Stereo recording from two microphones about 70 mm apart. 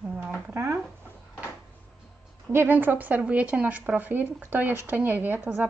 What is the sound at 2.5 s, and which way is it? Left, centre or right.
Speech, right.